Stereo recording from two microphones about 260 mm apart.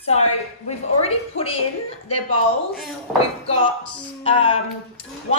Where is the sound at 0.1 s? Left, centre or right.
Left.